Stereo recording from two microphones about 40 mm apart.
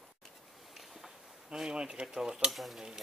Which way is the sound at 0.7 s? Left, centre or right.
Centre.